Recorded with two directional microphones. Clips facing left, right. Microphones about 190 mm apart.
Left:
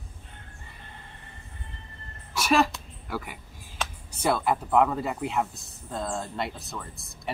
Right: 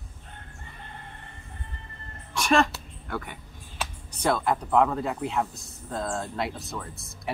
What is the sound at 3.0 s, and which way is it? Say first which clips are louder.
Speech: even; 5° left (ahead or behind).